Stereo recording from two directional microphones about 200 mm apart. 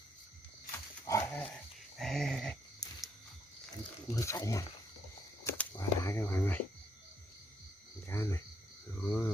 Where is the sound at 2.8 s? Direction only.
20° left (ahead or behind).